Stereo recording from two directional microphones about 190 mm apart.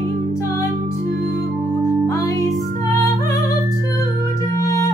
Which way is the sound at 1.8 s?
15° left (ahead or behind).